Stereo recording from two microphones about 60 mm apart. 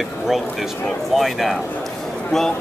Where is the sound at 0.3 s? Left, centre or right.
Centre.